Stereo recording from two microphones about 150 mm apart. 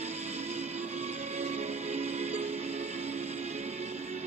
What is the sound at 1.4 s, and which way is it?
Music, 45° right (ahead or behind).